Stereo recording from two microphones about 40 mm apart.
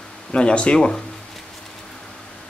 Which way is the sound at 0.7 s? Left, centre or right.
Centre.